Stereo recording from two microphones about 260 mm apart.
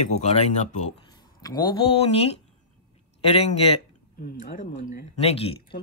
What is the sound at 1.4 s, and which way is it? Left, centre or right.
Speech, centre.